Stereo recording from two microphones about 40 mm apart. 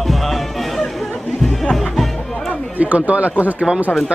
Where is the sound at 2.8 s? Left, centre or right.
Right.